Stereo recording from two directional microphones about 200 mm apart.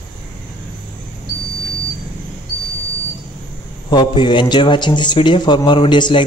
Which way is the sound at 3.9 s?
20° left (ahead or behind).